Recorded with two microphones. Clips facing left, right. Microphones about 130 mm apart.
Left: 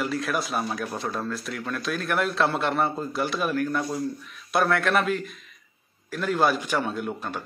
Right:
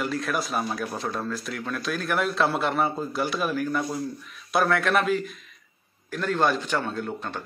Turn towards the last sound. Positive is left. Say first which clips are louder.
# left 1 dB
turn(degrees=10)  # may be behind; listen again after turning